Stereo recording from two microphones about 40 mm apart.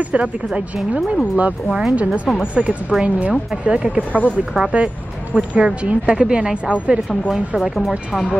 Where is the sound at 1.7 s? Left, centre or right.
Centre.